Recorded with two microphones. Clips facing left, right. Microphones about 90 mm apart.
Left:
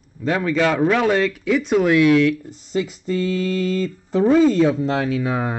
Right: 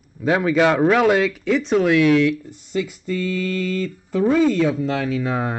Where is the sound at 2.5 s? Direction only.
20° left (ahead or behind).